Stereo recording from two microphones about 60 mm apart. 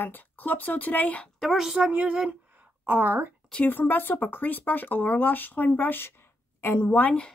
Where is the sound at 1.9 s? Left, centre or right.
Right.